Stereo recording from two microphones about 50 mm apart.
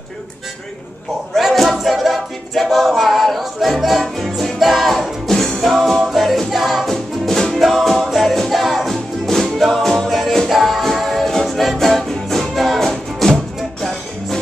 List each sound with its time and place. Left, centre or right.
1.5 s a capella: centre
4.0 s music: centre